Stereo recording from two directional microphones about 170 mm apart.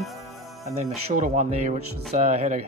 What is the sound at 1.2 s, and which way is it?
Speech, 45° right (ahead or behind).